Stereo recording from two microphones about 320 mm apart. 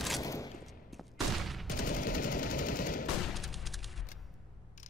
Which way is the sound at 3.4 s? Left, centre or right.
Centre.